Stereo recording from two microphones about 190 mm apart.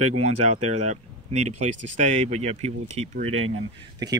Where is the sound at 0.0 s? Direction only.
35° right (ahead or behind).